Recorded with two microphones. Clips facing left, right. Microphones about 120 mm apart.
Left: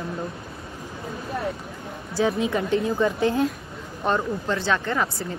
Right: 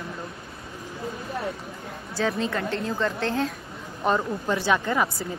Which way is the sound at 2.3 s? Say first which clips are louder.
Left 4 dB; 10° left (ahead or behind).